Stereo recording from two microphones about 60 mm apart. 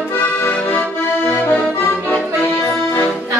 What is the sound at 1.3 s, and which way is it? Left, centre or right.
Accordion, left.